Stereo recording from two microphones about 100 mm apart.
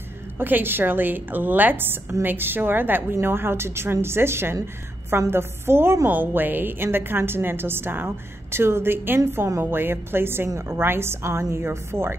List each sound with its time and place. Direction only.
0.4 s a woman's voice: 20° right (ahead or behind)